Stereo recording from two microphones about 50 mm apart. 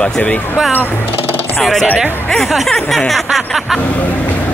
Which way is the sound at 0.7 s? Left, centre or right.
Left.